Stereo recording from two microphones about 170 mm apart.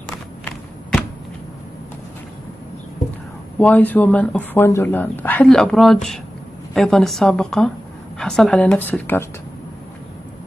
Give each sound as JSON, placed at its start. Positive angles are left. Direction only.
{"t": 3.5, "sound": "a woman's voice", "side_deg": 10}